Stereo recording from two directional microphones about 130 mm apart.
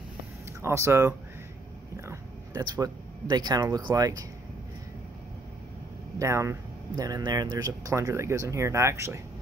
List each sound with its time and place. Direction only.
0.6 s speech: 20° right (ahead or behind)
2.0 s a sound: 25° right (ahead or behind)
3.9 s speech: 25° right (ahead or behind)
6.1 s speech: 20° right (ahead or behind)